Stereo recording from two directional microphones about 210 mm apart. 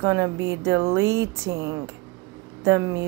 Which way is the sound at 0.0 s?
15° right (ahead or behind).